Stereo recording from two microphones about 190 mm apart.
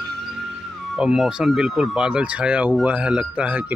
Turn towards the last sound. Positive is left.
turn(degrees=-5)  # may be behind; listen again after turning